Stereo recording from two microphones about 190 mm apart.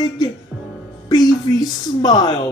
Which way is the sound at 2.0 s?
20° left (ahead or behind).